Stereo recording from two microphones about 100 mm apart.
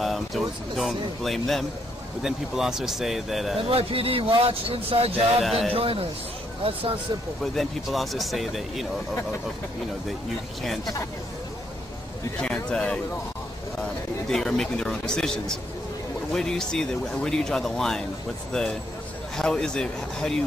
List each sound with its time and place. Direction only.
0.0 s speech: centre (ahead or behind)
3.7 s speech: 70° right (ahead or behind)
5.4 s speech: centre (ahead or behind)
5.7 s speech: 70° right (ahead or behind)
7.5 s speech: centre (ahead or behind)
12.4 s speech: 10° left (ahead or behind)
14.3 s speech: 5° left (ahead or behind)
19.3 s speech: 5° left (ahead or behind)